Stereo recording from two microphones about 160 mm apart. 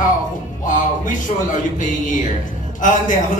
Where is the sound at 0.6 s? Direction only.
55° left (ahead or behind).